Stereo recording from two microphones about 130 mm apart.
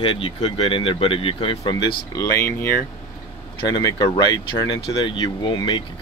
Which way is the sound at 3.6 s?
35° left (ahead or behind).